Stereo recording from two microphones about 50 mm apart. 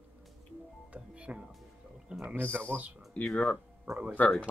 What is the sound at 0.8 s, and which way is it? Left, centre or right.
Music, right.